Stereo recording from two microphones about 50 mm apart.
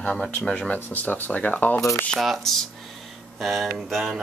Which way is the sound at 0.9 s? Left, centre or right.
Left.